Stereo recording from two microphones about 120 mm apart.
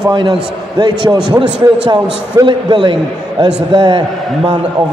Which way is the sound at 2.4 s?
40° right (ahead or behind).